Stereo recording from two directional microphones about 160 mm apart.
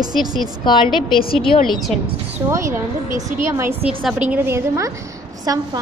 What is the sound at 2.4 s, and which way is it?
A woman's voice, 15° right (ahead or behind).